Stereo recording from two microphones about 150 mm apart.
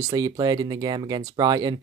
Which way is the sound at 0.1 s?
25° right (ahead or behind).